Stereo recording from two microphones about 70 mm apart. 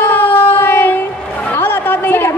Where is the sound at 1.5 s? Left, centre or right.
Left.